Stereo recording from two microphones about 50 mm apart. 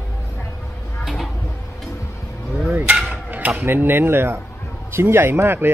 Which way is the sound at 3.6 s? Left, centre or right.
Right.